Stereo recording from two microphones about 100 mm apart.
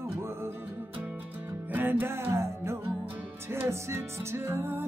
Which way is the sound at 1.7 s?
20° right (ahead or behind).